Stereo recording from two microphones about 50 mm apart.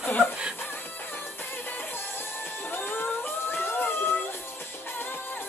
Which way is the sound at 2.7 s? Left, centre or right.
Left.